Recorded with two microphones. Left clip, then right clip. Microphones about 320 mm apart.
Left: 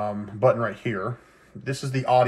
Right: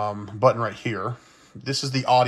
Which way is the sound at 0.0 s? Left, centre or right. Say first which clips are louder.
Right 2 dB; centre.